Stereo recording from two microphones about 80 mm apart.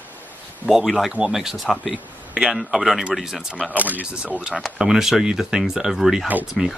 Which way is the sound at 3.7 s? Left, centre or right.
Right.